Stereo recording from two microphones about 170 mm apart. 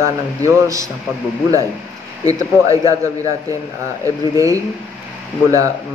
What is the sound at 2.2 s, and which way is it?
Speech, 20° right (ahead or behind).